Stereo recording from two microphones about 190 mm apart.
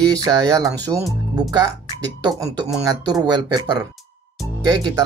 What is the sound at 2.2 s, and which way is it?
Speech, 20° right (ahead or behind).